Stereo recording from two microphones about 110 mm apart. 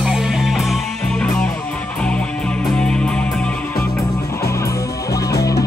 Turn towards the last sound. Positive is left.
turn(degrees=30)  # may be behind; listen again after turning